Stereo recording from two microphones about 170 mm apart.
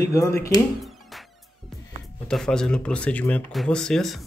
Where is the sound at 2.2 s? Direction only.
5° left (ahead or behind).